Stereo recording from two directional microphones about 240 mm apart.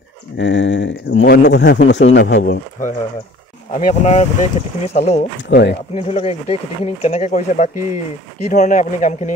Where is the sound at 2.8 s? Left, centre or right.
Left.